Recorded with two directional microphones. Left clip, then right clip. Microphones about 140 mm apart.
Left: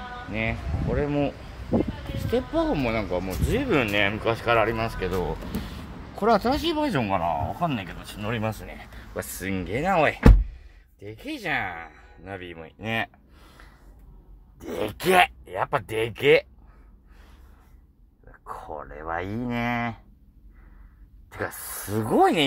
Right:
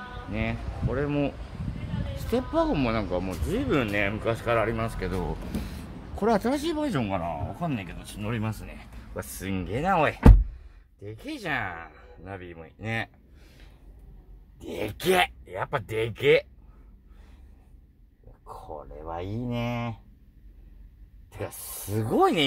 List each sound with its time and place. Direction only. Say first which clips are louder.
0.3 s speech: left 4 dB; 5° right (ahead or behind)
2.3 s speech: left 1 dB; 20° right (ahead or behind)
3.3 s speech: left 3 dB; 5° right (ahead or behind)
9.1 s speech: left 4 dB; 15° left (ahead or behind)
9.5 s speech: left 1 dB; centre (ahead or behind)
12.3 s speech: left 4 dB; 5° left (ahead or behind)
14.8 s speech: left 4 dB; centre (ahead or behind)
18.4 s speech: left 4 dB; 25° left (ahead or behind)
21.6 s speech: left 1 dB; centre (ahead or behind)